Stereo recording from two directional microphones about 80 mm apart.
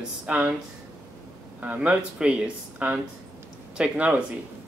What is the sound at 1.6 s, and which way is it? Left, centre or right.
Speech, centre.